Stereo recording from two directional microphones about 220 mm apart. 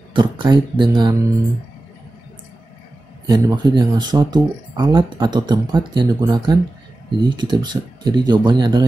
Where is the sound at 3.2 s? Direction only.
20° right (ahead or behind).